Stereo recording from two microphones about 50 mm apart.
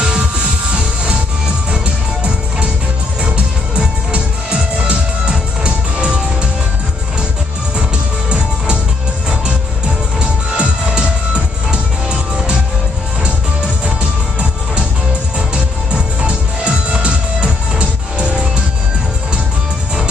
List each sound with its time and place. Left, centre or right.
0.0 s music: centre
3.2 s music: right
10.5 s music: centre
15.3 s music: right